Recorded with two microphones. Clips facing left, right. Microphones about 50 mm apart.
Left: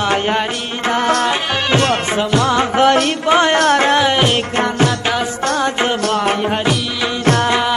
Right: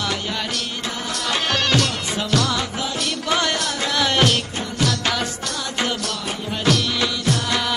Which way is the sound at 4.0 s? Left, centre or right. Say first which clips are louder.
Left 5 dB; left.